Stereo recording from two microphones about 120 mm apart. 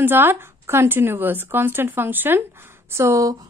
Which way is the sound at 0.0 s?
15° right (ahead or behind).